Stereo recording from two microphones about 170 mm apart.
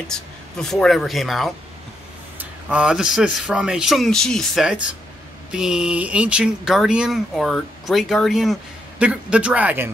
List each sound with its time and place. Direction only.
0.1 s speech: 5° left (ahead or behind)